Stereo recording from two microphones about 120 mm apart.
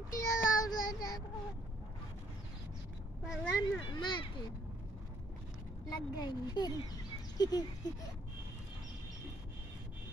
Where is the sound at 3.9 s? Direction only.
40° left (ahead or behind).